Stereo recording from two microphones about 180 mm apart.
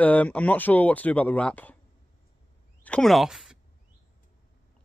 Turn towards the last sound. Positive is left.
turn(degrees=0)  # may be behind; listen again after turning